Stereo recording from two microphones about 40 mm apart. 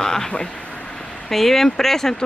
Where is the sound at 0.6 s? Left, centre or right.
Left.